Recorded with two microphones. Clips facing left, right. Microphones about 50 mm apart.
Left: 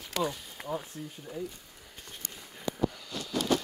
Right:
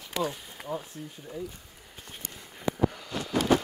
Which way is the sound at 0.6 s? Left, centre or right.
Centre.